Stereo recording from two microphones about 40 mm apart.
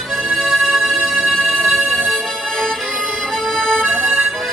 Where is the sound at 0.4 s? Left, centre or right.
Centre.